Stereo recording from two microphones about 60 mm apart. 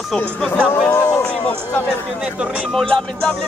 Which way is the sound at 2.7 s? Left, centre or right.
Centre.